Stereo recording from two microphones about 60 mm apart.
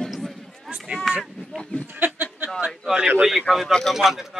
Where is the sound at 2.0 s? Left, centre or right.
Right.